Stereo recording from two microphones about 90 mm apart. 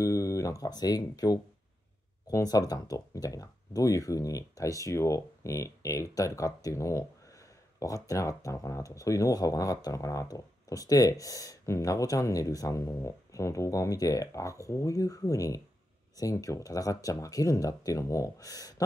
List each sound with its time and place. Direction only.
0.0 s speech: 35° left (ahead or behind)